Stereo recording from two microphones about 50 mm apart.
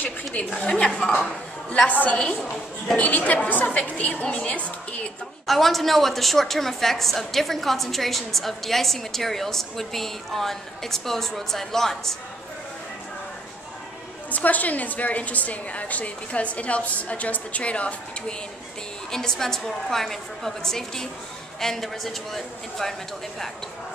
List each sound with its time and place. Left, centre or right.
0.0 s a woman's voice: left
0.5 s a woman's voice: centre
1.9 s a woman's voice: left
3.3 s a woman's voice: left
5.5 s a woman's voice: centre
14.3 s a woman's voice: left
19.0 s a woman's voice: centre